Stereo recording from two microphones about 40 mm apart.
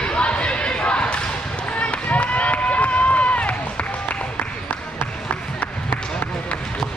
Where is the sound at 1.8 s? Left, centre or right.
Left.